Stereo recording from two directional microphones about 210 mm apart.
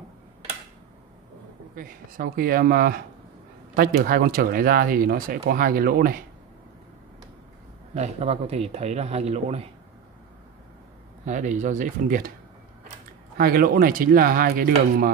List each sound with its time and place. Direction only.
1.8 s speech: 45° right (ahead or behind)
7.9 s speech: 30° right (ahead or behind)
11.2 s speech: 35° right (ahead or behind)
13.4 s speech: 45° right (ahead or behind)